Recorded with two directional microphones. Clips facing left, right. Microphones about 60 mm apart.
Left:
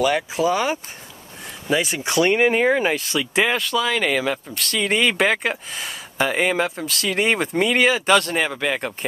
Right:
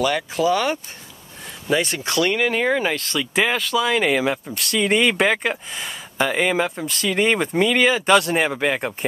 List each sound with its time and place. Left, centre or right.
0.0 s speech: centre
1.7 s speech: centre
2.0 s speech: left; by 8.2 s centre
8.2 s speech: centre